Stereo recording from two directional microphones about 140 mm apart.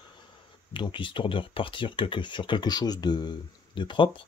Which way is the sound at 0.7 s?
35° left (ahead or behind).